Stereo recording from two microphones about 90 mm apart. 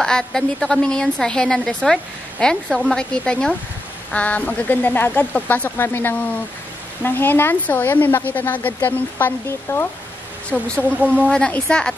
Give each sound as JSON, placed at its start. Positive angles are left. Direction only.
{"t": 0.0, "sound": "a woman's voice", "side_deg": 5}
{"t": 10.5, "sound": "speech", "side_deg": 15}
{"t": 10.9, "sound": "a woman's voice", "side_deg": -15}
{"t": 11.2, "sound": "speech", "side_deg": 10}